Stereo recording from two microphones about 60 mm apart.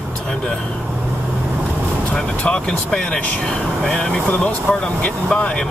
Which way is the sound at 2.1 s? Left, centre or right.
Centre.